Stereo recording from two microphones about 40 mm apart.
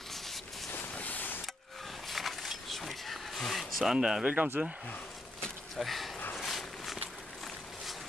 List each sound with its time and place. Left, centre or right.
0.9 s a sound: left
2.0 s a sound: centre
3.9 s speech: centre
4.2 s speech: right
5.8 s speech: centre
6.3 s walk: centre